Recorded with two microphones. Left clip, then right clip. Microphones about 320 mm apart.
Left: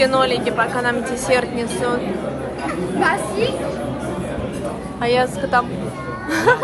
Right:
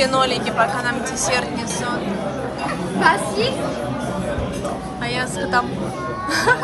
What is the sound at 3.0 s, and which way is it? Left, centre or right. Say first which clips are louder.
Speech: right 2 dB; right.